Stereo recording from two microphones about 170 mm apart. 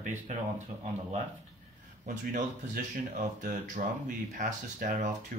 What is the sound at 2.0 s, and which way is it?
Speech, 60° right (ahead or behind).